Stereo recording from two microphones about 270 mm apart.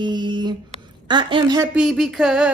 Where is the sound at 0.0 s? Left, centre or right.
Centre.